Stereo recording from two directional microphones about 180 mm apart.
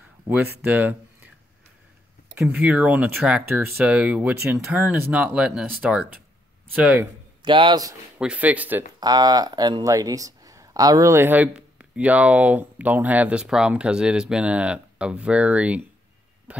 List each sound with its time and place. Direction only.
0.7 s speech: 10° right (ahead or behind)
2.4 s speech: 5° right (ahead or behind)
7.4 s a man's voice: 25° right (ahead or behind)
8.2 s speech: 5° right (ahead or behind)
9.0 s speech: 20° right (ahead or behind)
16.5 s a sound: 10° right (ahead or behind)